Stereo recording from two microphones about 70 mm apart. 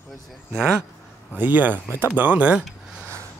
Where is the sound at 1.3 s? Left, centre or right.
Right.